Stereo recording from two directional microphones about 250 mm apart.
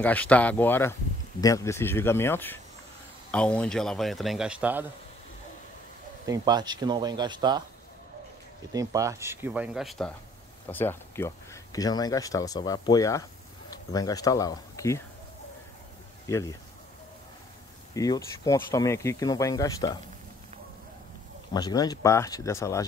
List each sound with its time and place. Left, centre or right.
0.0 s a man's voice: centre
6.2 s speech: centre
8.7 s speech: centre
16.3 s speech: centre
17.9 s speech: centre
21.5 s speech: centre